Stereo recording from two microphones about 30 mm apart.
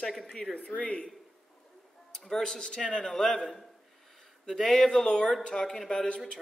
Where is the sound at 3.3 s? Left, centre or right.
Centre.